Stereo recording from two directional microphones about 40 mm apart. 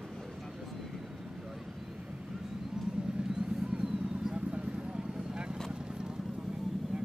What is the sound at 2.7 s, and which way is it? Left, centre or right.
Vehicle, centre.